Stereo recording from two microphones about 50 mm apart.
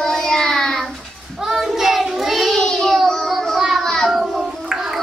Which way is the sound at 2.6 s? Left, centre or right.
Centre.